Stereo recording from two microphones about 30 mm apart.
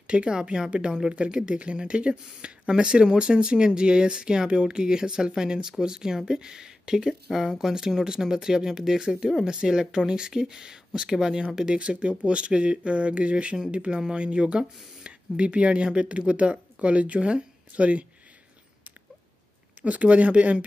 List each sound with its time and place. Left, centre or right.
0.0 s speech: right
7.1 s speech: centre
7.7 s speech: right
11.1 s speech: centre
11.5 s speech: right
19.8 s speech: right